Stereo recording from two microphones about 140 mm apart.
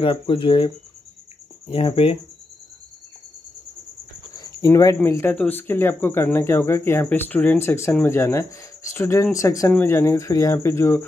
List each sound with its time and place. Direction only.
0.0 s speech: 40° left (ahead or behind)
4.4 s speech: 25° left (ahead or behind)